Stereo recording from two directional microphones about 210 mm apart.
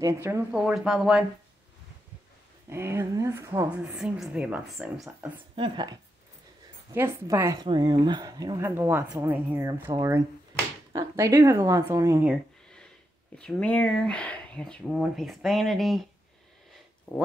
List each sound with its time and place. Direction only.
0.0 s speech: 15° right (ahead or behind)
2.7 s a woman's voice: 10° right (ahead or behind)
5.6 s a woman's voice: 20° right (ahead or behind)
13.4 s speech: 5° left (ahead or behind)